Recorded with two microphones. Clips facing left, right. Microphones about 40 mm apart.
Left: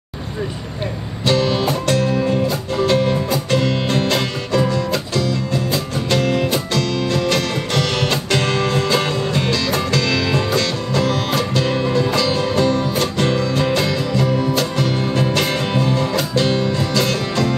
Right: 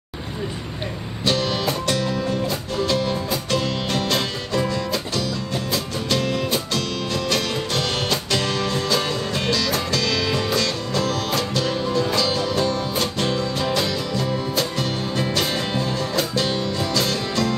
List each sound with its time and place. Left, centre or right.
1.2 s music: left